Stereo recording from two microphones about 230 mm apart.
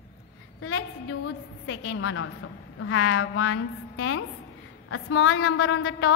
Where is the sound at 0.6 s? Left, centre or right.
Left.